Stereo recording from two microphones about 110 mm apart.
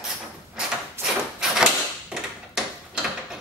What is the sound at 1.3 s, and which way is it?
Mechanisms, 5° right (ahead or behind).